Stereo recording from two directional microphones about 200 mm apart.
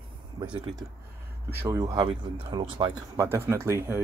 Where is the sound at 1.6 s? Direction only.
15° right (ahead or behind).